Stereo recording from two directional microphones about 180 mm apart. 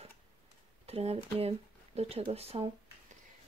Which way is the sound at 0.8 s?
35° right (ahead or behind).